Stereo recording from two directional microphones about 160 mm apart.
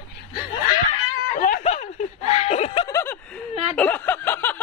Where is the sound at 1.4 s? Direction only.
55° left (ahead or behind).